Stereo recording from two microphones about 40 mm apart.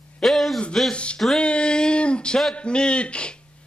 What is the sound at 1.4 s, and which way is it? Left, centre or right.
Speech, left.